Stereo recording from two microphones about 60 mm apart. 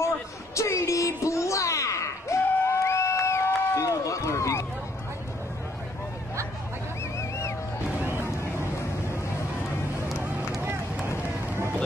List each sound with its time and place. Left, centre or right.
0.6 s a sound: left
2.6 s run: left
7.2 s vehicle: left
8.0 s vehicle: right